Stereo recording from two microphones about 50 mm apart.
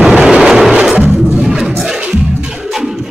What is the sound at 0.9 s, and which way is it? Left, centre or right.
Music, right.